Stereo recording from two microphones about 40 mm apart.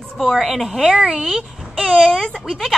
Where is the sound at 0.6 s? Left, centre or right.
Centre.